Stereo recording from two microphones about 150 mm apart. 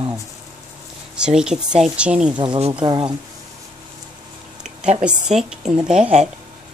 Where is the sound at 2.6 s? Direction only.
40° right (ahead or behind).